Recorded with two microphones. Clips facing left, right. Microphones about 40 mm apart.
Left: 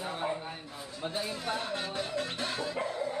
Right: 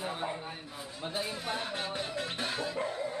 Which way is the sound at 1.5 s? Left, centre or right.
Centre.